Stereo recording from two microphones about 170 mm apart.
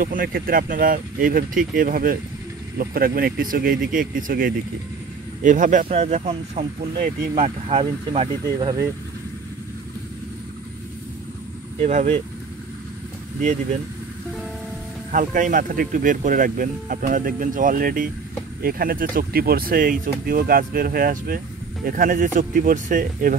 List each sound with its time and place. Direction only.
0.0 s speech: 55° right (ahead or behind); by 6.7 s 40° right (ahead or behind)
7.0 s speech: 60° right (ahead or behind)
7.4 s speech: 40° right (ahead or behind)
7.8 s speech: 25° right (ahead or behind)
11.8 s speech: 40° right (ahead or behind)
13.4 s speech: 45° right (ahead or behind)
15.0 s speech: 50° right (ahead or behind)